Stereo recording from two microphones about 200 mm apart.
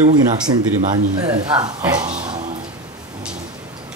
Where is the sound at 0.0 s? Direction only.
20° right (ahead or behind).